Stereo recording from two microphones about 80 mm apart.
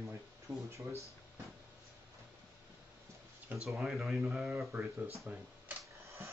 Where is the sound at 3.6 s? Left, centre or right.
Centre.